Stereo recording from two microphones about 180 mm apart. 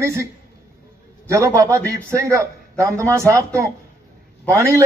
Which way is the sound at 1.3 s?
15° right (ahead or behind).